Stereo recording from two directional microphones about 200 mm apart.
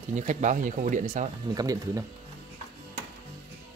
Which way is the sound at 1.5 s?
20° right (ahead or behind).